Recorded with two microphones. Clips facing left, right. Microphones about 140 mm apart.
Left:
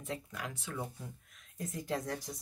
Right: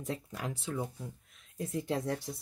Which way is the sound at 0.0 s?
35° right (ahead or behind).